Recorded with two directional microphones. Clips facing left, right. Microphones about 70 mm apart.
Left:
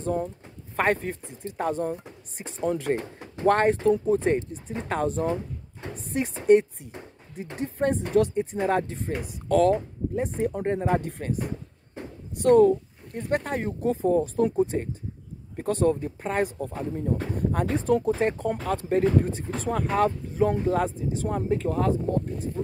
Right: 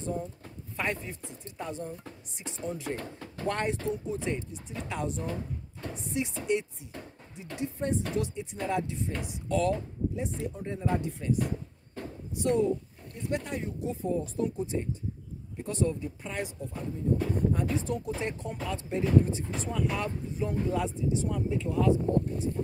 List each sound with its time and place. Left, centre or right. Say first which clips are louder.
0.7 s speech: left 9 dB; left
2.3 s speech: left 3 dB; left
3.0 s speech: left 3 dB; centre
3.4 s speech: left 10 dB; left
5.2 s drawer open or close: left 8 dB; left
5.9 s speech: left 4 dB; left
10.5 s speech: left 7 dB; left
12.4 s speech: left 9 dB; left
16.6 s speech: left 3 dB; left